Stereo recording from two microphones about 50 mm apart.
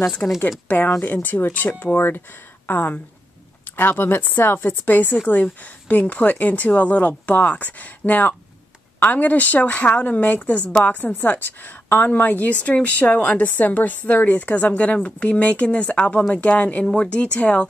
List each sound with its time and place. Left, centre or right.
0.2 s speech: left